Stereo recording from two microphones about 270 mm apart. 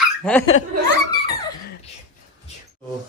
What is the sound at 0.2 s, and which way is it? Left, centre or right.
Speech, centre.